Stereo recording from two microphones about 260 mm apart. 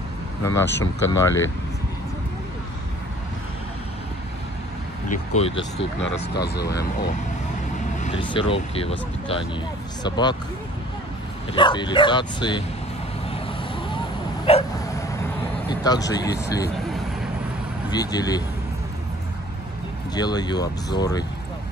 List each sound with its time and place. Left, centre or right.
0.4 s speech: centre
5.1 s speech: left
6.3 s speech: left
8.0 s speech: left
11.5 s speech: centre
14.4 s dog: left
15.8 s speech: centre
17.9 s speech: centre
20.2 s speech: centre